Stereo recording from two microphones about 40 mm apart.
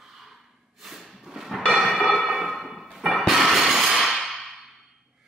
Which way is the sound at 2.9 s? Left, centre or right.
Centre.